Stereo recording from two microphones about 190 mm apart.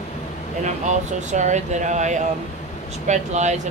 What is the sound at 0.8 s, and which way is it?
Speech, 40° right (ahead or behind).